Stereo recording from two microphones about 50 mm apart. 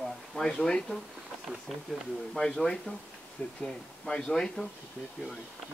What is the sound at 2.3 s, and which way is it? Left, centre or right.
Speech, centre.